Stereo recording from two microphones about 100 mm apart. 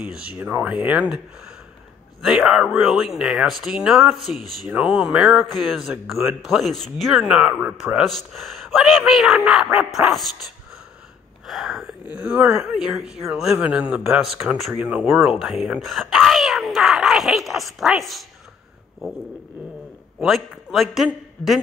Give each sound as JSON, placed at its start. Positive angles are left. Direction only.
{"t": 0.0, "sound": "speech", "side_deg": -15}
{"t": 2.2, "sound": "speech", "side_deg": -5}
{"t": 4.6, "sound": "speech", "side_deg": -10}
{"t": 11.4, "sound": "speech", "side_deg": 0}
{"t": 12.1, "sound": "speech", "side_deg": -15}
{"t": 14.8, "sound": "speech", "side_deg": -15}
{"t": 15.2, "sound": "speech", "side_deg": -5}
{"t": 20.2, "sound": "a man's voice", "side_deg": 0}